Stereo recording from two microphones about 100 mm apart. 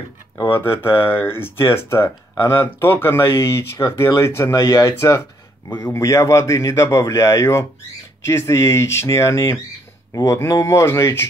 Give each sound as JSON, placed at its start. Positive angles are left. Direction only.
{"t": 0.4, "sound": "speech", "side_deg": 25}